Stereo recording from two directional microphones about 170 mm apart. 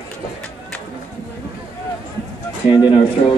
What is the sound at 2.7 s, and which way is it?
Speech, 25° left (ahead or behind).